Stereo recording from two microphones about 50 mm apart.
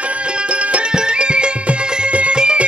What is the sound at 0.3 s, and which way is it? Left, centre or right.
Music, right.